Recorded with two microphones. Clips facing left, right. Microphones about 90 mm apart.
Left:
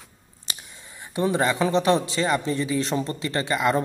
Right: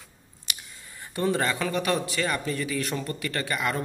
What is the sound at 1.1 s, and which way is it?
A man's voice, 20° left (ahead or behind).